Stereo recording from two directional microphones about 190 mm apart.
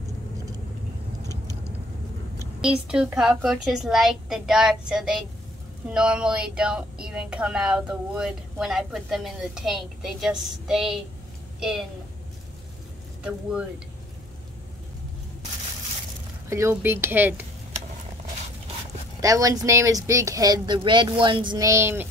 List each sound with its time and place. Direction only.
2.6 s speech: 5° right (ahead or behind)
13.2 s speech: 5° right (ahead or behind)
16.4 s speech: 15° right (ahead or behind)
19.2 s speech: 15° right (ahead or behind)